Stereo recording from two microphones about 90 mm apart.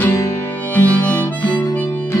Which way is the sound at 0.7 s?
20° left (ahead or behind).